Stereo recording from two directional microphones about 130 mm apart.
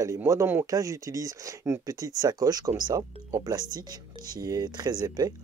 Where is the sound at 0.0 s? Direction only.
25° right (ahead or behind).